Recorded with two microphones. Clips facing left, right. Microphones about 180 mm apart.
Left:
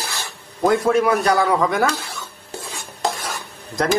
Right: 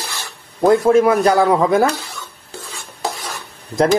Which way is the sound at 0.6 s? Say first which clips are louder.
Right 5 dB; 25° right (ahead or behind).